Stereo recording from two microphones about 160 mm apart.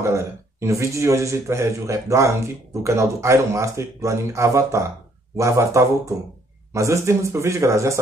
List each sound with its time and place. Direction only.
0.0 s speech: 20° right (ahead or behind)